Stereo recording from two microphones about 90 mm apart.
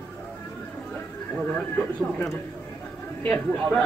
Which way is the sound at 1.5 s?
10° left (ahead or behind).